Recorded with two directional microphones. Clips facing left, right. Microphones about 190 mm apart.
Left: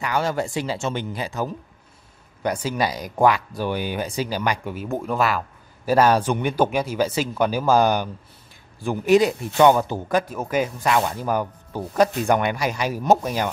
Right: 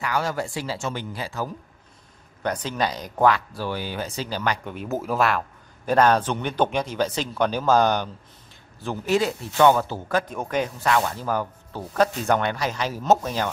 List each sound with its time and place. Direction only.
0.0 s speech: 25° left (ahead or behind)
10.3 s speech: 5° left (ahead or behind)